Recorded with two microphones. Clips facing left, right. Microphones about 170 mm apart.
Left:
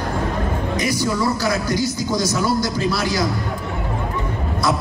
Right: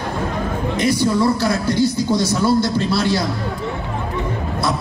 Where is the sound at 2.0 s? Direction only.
25° right (ahead or behind).